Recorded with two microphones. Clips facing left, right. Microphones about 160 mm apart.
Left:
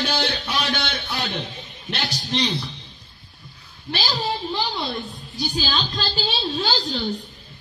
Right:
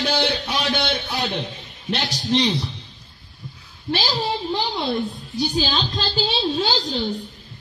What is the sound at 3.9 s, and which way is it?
A woman's voice, 20° right (ahead or behind).